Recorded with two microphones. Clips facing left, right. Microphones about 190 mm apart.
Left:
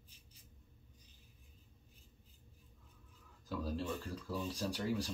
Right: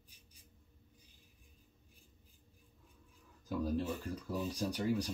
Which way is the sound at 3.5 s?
15° right (ahead or behind).